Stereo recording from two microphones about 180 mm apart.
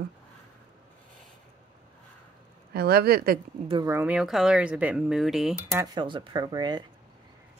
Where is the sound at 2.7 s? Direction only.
60° right (ahead or behind).